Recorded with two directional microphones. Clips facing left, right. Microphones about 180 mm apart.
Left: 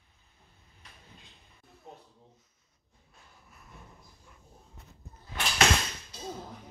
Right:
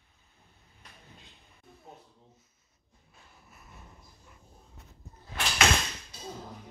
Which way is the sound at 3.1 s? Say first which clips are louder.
Right 1 dB; 5° right (ahead or behind).